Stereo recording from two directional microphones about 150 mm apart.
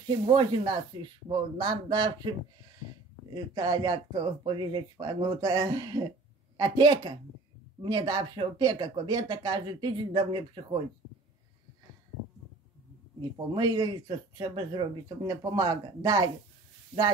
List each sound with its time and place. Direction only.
0.3 s speech: 35° right (ahead or behind)
3.3 s speech: 25° right (ahead or behind)
13.2 s speech: 25° right (ahead or behind)